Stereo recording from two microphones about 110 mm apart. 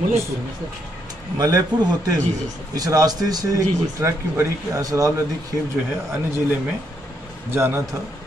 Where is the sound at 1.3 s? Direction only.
35° right (ahead or behind).